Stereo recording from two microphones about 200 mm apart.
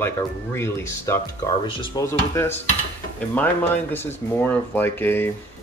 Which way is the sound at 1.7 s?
25° left (ahead or behind).